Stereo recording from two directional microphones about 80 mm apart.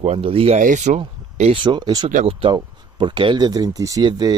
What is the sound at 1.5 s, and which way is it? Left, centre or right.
Speech, right.